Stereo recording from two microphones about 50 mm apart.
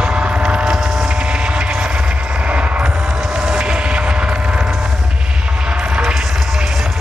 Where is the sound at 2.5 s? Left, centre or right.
Right.